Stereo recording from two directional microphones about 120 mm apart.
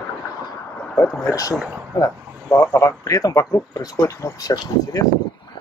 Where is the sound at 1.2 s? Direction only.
30° left (ahead or behind).